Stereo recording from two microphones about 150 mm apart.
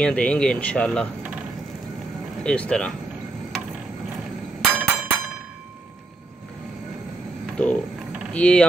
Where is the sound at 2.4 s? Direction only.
5° left (ahead or behind).